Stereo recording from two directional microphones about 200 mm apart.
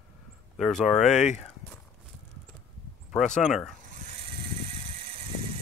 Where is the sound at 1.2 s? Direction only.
35° left (ahead or behind).